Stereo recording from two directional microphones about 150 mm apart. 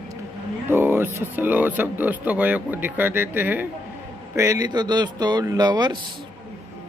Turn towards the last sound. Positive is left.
turn(degrees=-30)  # may be behind; listen again after turning